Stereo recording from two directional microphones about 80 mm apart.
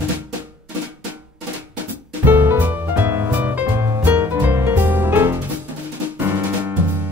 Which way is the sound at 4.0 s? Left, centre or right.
Right.